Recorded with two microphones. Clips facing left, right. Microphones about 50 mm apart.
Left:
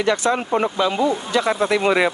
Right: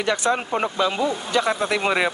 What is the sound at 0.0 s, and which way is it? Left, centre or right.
Speech, centre.